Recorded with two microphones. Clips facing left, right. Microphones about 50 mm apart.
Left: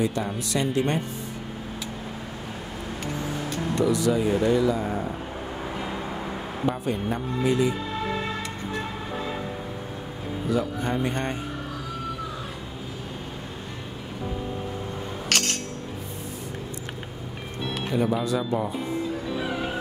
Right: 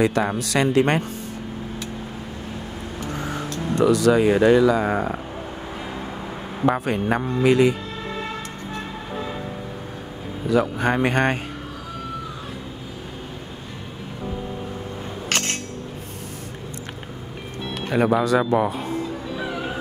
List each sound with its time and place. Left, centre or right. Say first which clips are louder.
0.0 s speech: right 6 dB; right
3.8 s speech: right 7 dB; right
6.6 s speech: right 6 dB; right
10.5 s speech: right 6 dB; right
15.2 s a sound: right 1 dB; right
17.8 s speech: right 6 dB; right